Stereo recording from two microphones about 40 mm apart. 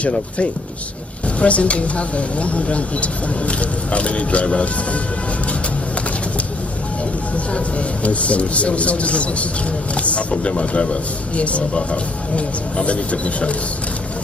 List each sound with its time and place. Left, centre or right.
0.0 s speech: left
7.5 s speech: left